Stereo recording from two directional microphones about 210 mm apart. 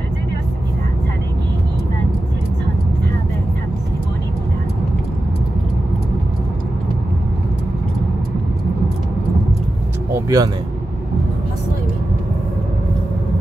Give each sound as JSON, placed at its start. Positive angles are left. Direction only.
{"t": 10.1, "sound": "vehicle", "side_deg": -15}